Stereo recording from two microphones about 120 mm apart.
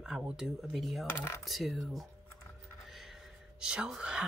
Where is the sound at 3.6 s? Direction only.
5° right (ahead or behind).